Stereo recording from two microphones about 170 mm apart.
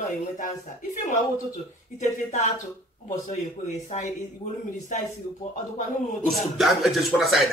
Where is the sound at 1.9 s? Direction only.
45° left (ahead or behind).